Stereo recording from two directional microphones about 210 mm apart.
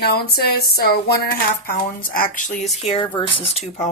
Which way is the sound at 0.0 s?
50° left (ahead or behind).